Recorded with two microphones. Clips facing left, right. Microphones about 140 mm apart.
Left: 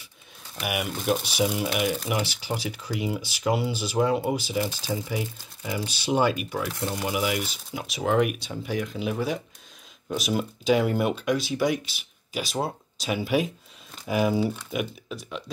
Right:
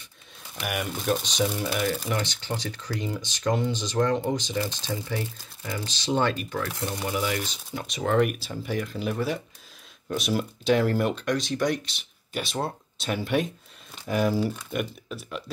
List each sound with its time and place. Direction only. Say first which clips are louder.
0.6 s speech: left 1 dB; 5° left (ahead or behind)